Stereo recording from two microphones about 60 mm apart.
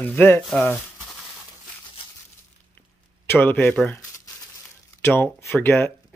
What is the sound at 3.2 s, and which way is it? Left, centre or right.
Speech, left.